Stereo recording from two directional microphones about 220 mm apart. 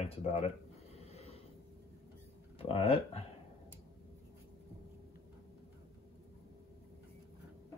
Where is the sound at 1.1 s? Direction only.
30° left (ahead or behind).